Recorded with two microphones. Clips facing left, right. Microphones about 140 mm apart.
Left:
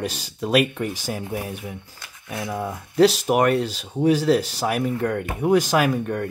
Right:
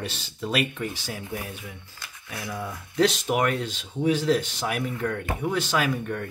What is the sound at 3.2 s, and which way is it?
Speech, 40° left (ahead or behind).